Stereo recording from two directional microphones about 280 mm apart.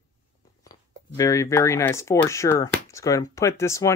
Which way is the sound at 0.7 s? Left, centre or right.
Centre.